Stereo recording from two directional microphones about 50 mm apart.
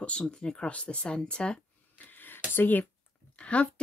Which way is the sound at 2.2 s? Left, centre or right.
Left.